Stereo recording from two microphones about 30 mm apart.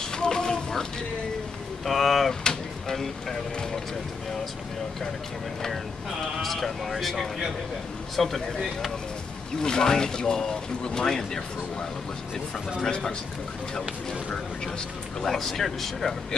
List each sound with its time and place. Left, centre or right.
0.1 s a sound: left
1.9 s speech: centre
6.4 s speech: centre
8.2 s speech: centre
9.6 s speech: left
15.2 s speech: centre